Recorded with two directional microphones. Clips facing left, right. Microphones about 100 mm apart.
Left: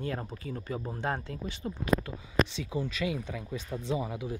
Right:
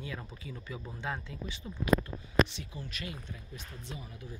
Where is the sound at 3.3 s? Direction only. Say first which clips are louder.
Left 11 dB; 90° left.